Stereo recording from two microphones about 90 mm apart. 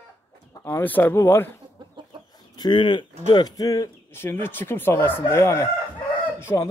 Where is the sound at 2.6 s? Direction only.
60° left (ahead or behind).